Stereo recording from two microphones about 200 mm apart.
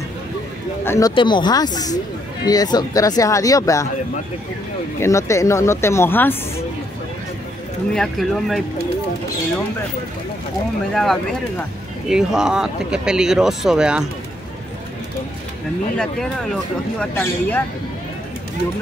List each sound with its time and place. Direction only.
0.8 s speech: 15° left (ahead or behind)
5.0 s speech: 15° left (ahead or behind)
7.9 s speech: centre (ahead or behind)
11.0 s speech: centre (ahead or behind)
17.0 s speech: 10° left (ahead or behind)